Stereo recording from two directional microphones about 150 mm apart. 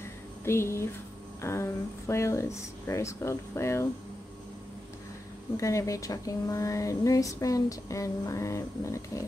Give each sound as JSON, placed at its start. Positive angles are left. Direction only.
{"t": 0.5, "sound": "speech", "side_deg": 20}
{"t": 5.6, "sound": "speech", "side_deg": 20}